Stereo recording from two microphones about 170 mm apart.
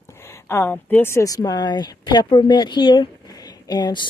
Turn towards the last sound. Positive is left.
turn(degrees=25)  # may be behind; listen again after turning